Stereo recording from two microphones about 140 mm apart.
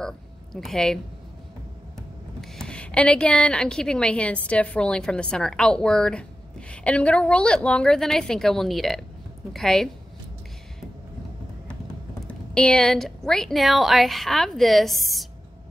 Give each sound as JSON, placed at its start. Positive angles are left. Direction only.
{"t": 0.0, "sound": "a sound", "side_deg": 5}
{"t": 2.4, "sound": "a woman's voice", "side_deg": 5}
{"t": 12.2, "sound": "a woman's voice", "side_deg": 5}